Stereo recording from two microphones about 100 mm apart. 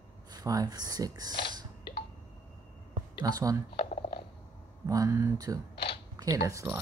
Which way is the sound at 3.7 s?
60° left (ahead or behind).